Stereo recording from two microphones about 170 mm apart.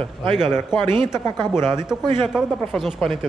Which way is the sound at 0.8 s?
25° right (ahead or behind).